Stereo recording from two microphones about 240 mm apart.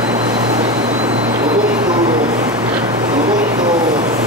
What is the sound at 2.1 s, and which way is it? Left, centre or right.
Vehicle, centre.